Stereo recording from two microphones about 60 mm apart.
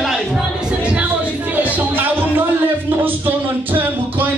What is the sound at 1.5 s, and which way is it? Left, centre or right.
Music, right.